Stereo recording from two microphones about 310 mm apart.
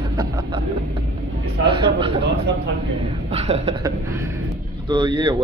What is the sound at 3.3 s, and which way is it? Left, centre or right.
Speech, right.